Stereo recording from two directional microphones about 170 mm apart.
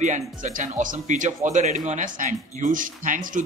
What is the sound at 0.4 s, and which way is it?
Speech, 50° right (ahead or behind).